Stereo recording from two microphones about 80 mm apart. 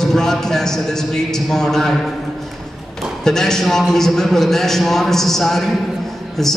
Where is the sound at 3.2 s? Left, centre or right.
Centre.